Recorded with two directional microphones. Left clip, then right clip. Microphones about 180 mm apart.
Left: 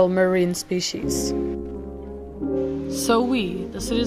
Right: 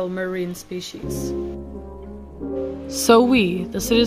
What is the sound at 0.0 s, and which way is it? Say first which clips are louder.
Speech: left 7 dB; 35° left (ahead or behind).